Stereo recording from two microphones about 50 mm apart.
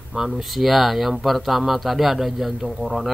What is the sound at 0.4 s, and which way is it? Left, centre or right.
Speech, centre.